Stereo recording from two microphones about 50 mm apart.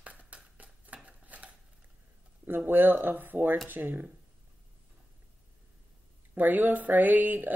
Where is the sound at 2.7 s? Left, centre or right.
Right.